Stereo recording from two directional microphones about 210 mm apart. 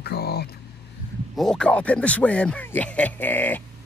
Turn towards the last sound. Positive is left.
turn(degrees=10)  # may be behind; listen again after turning